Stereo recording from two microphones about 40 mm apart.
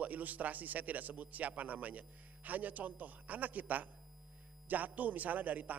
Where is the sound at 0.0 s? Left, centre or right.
Right.